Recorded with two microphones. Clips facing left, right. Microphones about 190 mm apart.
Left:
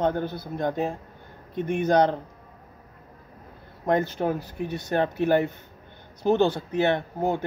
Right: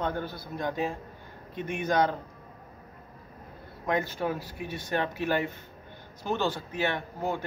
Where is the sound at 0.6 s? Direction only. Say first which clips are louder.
Left 4 dB; 55° left (ahead or behind).